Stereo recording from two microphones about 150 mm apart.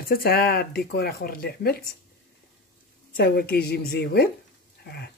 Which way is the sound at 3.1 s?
90° left.